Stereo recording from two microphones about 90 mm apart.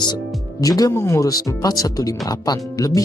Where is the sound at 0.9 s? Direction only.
35° left (ahead or behind).